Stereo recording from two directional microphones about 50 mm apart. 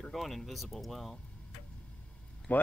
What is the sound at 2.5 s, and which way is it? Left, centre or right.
Speech, left.